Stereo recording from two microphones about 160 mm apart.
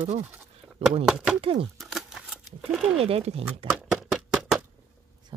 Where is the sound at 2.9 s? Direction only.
35° right (ahead or behind).